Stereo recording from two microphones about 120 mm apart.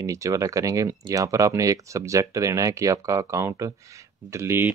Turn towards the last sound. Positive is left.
turn(degrees=-20)  # may be behind; listen again after turning